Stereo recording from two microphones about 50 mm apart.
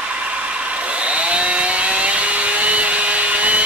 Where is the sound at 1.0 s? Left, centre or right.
Right.